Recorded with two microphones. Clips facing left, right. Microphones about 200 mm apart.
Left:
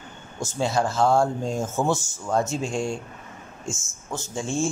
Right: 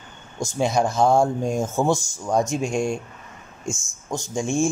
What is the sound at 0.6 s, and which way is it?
Speech, 15° right (ahead or behind).